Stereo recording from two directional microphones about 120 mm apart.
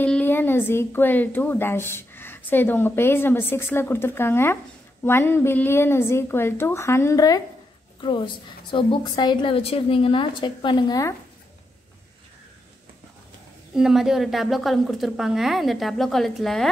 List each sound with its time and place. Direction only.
0.0 s a woman's voice: 15° left (ahead or behind); by 7.4 s 30° left (ahead or behind)
8.0 s a woman's voice: 40° left (ahead or behind)
13.7 s a woman's voice: 5° right (ahead or behind)